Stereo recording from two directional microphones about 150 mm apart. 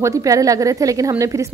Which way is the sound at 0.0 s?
20° right (ahead or behind).